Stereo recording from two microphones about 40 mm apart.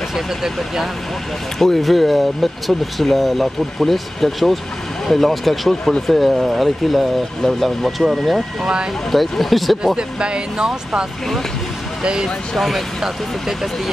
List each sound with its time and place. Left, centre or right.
0.1 s speech: centre
1.6 s speech: centre
6.3 s speech: centre
9.1 s speech: centre
9.9 s speech: right
12.5 s speech: centre
13.0 s speech: centre